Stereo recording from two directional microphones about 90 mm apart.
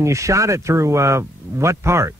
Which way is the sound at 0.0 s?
35° right (ahead or behind).